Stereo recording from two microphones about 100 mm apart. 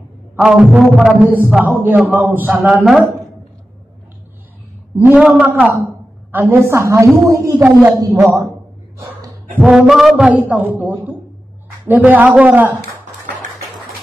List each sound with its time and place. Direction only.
0.4 s a man's voice: 10° right (ahead or behind)
1.9 s a man's voice: 20° right (ahead or behind)
2.7 s a woman's voice: centre (ahead or behind)
4.9 s a man's voice: 10° right (ahead or behind); by 8.3 s 30° right (ahead or behind)
9.5 s a man's voice: 10° right (ahead or behind)